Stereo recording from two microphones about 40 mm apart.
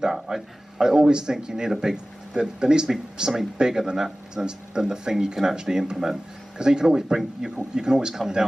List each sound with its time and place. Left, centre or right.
0.0 s speech: centre